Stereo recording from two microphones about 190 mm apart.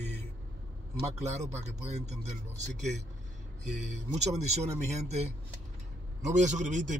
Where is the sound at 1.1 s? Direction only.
35° right (ahead or behind).